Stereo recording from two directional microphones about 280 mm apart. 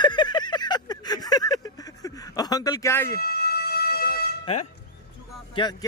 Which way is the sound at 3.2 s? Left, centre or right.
Left.